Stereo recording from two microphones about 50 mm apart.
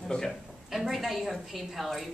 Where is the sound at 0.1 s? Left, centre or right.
Centre.